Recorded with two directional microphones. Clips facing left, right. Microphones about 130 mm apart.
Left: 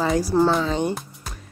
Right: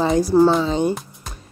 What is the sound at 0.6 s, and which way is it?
Speech, 20° right (ahead or behind).